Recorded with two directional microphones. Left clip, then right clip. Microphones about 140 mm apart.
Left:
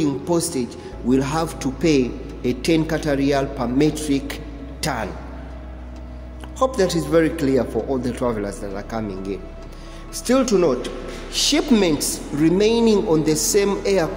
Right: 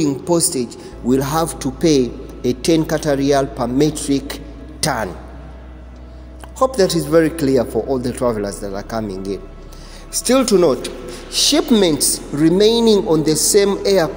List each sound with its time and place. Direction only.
0.0 s a man's voice: 25° right (ahead or behind)
6.6 s a man's voice: 25° right (ahead or behind)